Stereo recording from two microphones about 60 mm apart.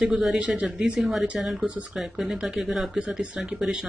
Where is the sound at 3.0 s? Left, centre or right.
Right.